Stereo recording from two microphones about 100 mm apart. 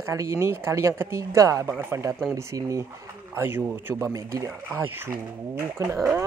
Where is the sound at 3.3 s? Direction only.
20° right (ahead or behind).